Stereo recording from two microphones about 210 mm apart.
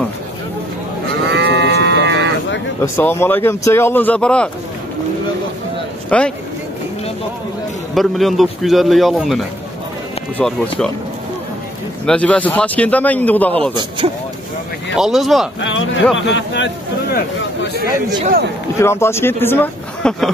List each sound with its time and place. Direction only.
1.2 s livestock: 55° right (ahead or behind)
2.8 s a man's voice: 10° left (ahead or behind)
6.0 s speech: 5° left (ahead or behind)
7.9 s a man's voice: centre (ahead or behind)
12.1 s a man's voice: 5° left (ahead or behind)
14.0 s speech: 30° right (ahead or behind)
15.0 s a man's voice: centre (ahead or behind)
15.6 s speech: 65° left (ahead or behind)
18.8 s a man's voice: 10° left (ahead or behind)